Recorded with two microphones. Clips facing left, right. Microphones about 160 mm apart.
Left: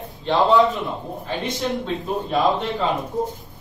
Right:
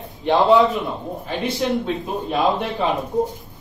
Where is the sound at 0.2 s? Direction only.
15° right (ahead or behind).